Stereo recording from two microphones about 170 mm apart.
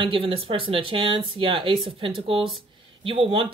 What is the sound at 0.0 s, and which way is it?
Speech, 30° right (ahead or behind).